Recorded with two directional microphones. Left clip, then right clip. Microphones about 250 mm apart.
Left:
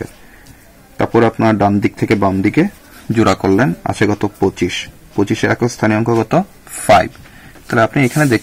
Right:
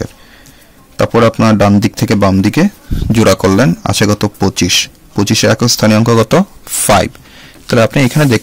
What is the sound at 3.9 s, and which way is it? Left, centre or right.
Speech, right.